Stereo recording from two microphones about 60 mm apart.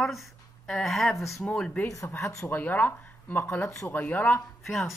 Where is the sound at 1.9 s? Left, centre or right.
Left.